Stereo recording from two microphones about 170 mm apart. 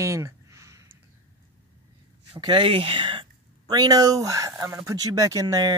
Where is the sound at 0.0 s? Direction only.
20° right (ahead or behind).